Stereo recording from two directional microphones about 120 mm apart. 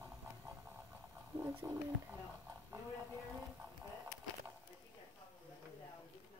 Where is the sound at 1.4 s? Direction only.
20° right (ahead or behind).